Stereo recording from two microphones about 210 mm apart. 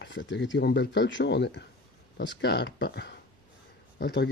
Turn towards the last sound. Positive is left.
turn(degrees=50)  # may be behind; listen again after turning